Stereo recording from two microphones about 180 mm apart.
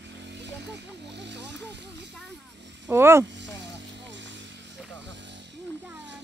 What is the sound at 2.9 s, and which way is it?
Speech, 15° right (ahead or behind).